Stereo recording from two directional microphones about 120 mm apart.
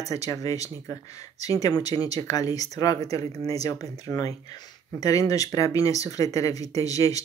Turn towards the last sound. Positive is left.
turn(degrees=30)  # may be behind; listen again after turning